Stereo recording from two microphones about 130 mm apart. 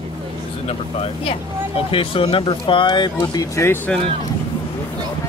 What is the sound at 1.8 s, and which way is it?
Speech, 45° left (ahead or behind).